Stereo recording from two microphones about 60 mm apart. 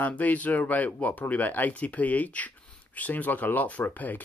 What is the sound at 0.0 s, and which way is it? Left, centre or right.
Speech, left.